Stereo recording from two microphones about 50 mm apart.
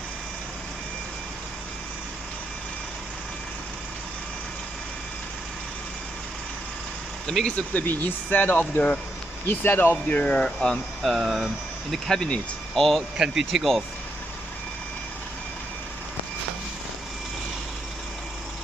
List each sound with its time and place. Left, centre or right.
7.4 s speech: left
7.8 s speech: left
10.2 s speech: centre
11.0 s speech: centre
12.1 s speech: centre
13.2 s speech: centre